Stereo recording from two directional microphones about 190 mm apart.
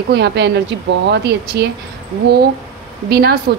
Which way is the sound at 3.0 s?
60° right (ahead or behind).